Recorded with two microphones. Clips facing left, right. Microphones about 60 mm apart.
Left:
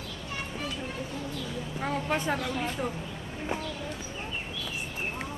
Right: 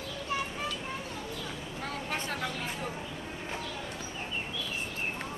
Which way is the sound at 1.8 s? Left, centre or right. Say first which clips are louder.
Left 6 dB; centre.